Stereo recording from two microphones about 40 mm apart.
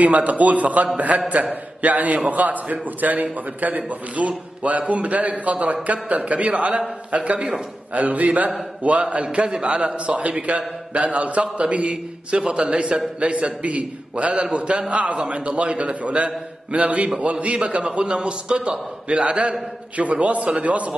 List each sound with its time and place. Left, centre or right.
0.0 s a man's voice: right
20.0 s a man's voice: right